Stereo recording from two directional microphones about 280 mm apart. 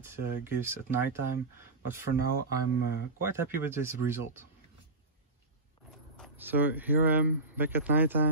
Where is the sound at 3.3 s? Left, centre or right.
Centre.